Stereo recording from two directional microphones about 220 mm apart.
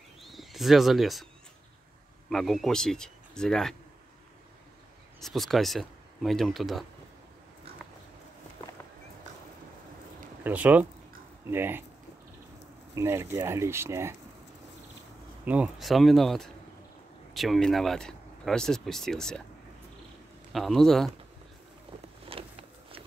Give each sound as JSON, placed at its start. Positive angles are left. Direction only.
{"t": 0.2, "sound": "a sound", "side_deg": 0}
{"t": 2.2, "sound": "speech", "side_deg": 0}
{"t": 5.2, "sound": "speech", "side_deg": 0}
{"t": 10.4, "sound": "speech", "side_deg": -5}
{"t": 12.9, "sound": "speech", "side_deg": -10}
{"t": 15.4, "sound": "speech", "side_deg": -5}
{"t": 20.5, "sound": "speech", "side_deg": 0}
{"t": 22.3, "sound": "a sound", "side_deg": -25}